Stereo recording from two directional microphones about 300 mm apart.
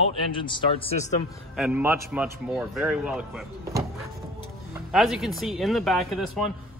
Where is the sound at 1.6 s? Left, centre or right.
Centre.